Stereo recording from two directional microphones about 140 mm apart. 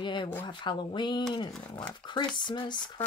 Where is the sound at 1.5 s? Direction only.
5° left (ahead or behind).